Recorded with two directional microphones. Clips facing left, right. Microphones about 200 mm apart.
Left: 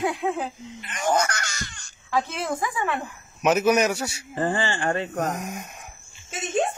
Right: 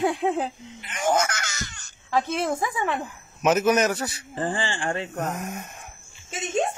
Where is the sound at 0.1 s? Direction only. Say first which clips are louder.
Right 2 dB; 30° right (ahead or behind).